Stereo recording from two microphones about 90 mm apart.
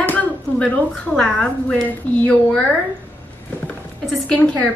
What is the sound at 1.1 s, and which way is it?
Speech, 5° left (ahead or behind).